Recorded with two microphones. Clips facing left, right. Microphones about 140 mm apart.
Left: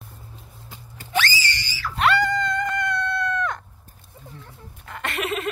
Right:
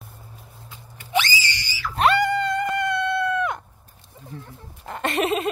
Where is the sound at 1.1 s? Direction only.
20° right (ahead or behind).